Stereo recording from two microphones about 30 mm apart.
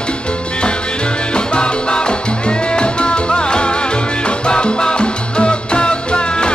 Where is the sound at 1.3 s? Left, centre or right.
Left.